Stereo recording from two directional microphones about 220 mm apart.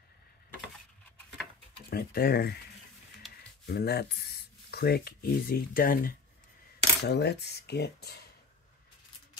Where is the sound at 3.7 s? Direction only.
45° left (ahead or behind).